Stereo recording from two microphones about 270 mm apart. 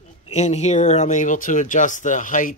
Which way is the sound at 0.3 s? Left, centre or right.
Left.